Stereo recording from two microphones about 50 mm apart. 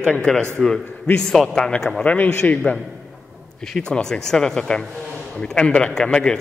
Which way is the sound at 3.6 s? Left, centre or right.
Centre.